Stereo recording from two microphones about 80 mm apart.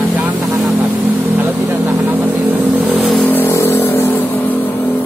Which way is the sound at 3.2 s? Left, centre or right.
Left.